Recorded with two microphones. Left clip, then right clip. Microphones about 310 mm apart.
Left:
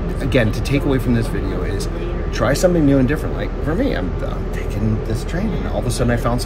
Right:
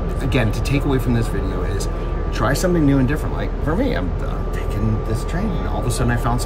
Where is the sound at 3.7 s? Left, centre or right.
Right.